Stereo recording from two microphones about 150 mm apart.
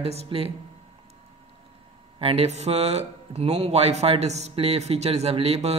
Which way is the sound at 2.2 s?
40° right (ahead or behind).